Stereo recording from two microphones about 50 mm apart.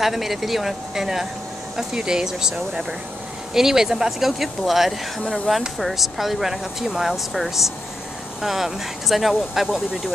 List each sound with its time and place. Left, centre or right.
0.0 s speech: centre
3.5 s speech: centre
5.2 s speech: centre
5.8 s speech: centre